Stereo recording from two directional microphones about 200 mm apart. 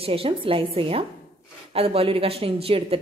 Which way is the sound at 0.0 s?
30° right (ahead or behind).